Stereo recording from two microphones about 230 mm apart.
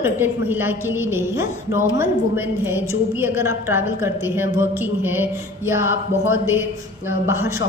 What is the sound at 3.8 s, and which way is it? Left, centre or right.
Speech, left.